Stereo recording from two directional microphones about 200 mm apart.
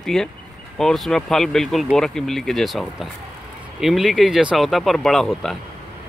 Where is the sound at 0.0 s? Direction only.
Centre (ahead or behind).